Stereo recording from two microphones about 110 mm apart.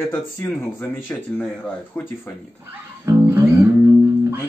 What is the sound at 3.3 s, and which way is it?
Music, 20° right (ahead or behind).